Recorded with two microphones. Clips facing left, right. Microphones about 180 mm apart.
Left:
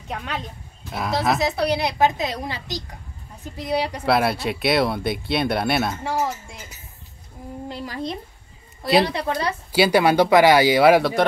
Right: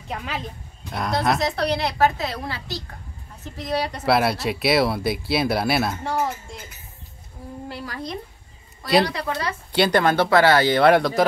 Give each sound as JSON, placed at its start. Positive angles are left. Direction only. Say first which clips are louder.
{"t": 0.1, "sound": "a woman's voice", "louder": "even", "side_deg": 0}
{"t": 4.0, "sound": "speech", "louder": "right 2 dB", "side_deg": 0}
{"t": 7.6, "sound": "speech", "louder": "left 3 dB", "side_deg": 20}
{"t": 8.8, "sound": "speech", "louder": "left 1 dB", "side_deg": 0}
{"t": 9.1, "sound": "speech", "louder": "left 3 dB", "side_deg": 25}
{"t": 9.7, "sound": "a woman's voice", "louder": "left 2 dB", "side_deg": 5}